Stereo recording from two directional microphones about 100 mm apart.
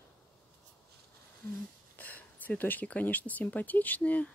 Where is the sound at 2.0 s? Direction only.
15° left (ahead or behind).